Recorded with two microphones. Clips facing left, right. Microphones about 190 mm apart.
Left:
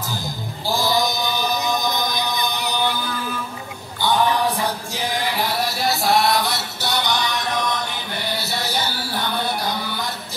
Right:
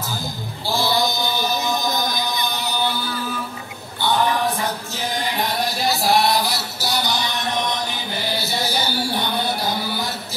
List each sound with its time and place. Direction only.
0.7 s chant: 15° left (ahead or behind)
5.4 s music: 5° left (ahead or behind)
7.5 s music: 20° right (ahead or behind)
8.2 s music: centre (ahead or behind)